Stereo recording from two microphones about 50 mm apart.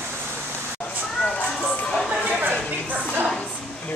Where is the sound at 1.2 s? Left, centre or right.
Left.